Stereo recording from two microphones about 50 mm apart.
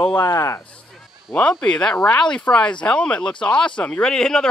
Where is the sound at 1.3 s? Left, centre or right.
Left.